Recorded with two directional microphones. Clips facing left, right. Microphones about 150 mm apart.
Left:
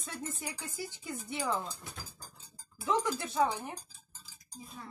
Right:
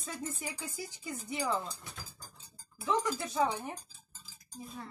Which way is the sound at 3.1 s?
5° left (ahead or behind).